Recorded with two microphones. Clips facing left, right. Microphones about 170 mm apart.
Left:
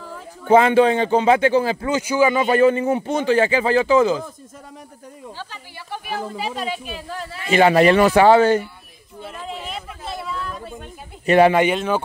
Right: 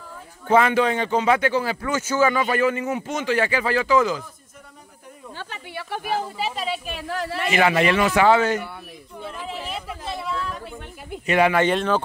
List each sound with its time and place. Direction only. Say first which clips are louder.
0.5 s a man's voice: left 5 dB; 30° left (ahead or behind)
2.4 s a man's voice: left 6 dB; 30° left (ahead or behind)
5.4 s snake: right 2 dB; 60° right (ahead or behind)
6.3 s speech: left 1 dB; centre (ahead or behind)
7.0 s a man's voice: right 4 dB; 75° right (ahead or behind)
7.5 s a man's voice: left 6 dB; 35° left (ahead or behind)
9.2 s chatter: left 1 dB; centre (ahead or behind)
11.2 s a man's voice: left 6 dB; 35° left (ahead or behind)
11.7 s speech: even; 5° left (ahead or behind)